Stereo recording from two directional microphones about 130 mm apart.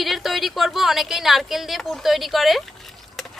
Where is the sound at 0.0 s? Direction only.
Centre (ahead or behind).